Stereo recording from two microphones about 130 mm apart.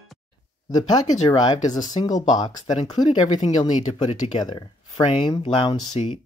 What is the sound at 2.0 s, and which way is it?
Speech, 50° left (ahead or behind).